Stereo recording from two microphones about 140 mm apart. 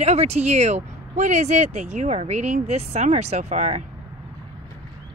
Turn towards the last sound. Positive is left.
turn(degrees=-50)  # may be behind; listen again after turning